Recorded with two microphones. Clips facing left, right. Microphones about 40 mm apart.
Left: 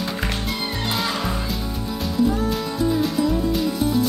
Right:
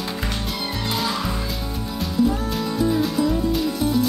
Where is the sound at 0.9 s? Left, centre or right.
Centre.